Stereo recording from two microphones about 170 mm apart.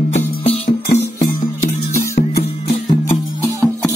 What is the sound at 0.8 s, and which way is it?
Music, 55° left (ahead or behind).